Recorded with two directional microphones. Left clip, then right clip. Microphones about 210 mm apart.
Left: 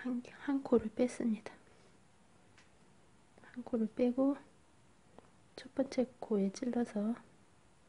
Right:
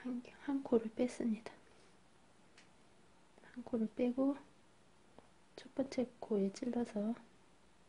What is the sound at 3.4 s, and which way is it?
Speech, 10° left (ahead or behind).